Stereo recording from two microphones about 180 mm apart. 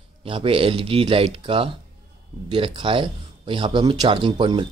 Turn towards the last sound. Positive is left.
turn(degrees=-30)  # may be behind; listen again after turning